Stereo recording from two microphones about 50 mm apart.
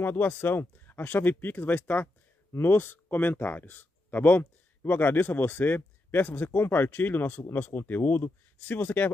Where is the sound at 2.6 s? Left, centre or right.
Left.